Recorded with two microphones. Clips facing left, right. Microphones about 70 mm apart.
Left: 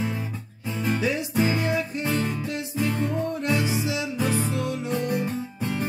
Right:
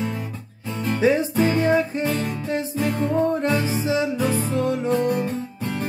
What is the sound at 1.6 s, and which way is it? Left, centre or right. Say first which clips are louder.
Music: right 6 dB; right.